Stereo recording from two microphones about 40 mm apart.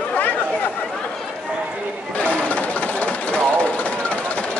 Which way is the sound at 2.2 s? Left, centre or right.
Left.